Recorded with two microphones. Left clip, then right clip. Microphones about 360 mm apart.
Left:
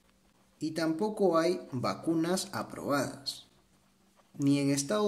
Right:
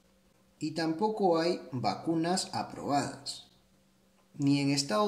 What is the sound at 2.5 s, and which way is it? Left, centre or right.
Speech, left.